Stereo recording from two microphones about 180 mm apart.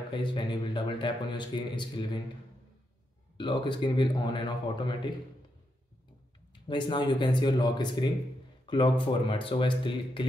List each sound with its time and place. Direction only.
0.1 s a man's voice: 25° left (ahead or behind)
3.3 s a man's voice: 25° left (ahead or behind)
6.7 s a man's voice: 25° left (ahead or behind)